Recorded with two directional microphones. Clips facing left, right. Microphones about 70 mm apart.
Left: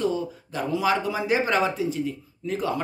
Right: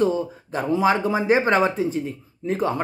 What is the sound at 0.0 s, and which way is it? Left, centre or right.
Speech, right.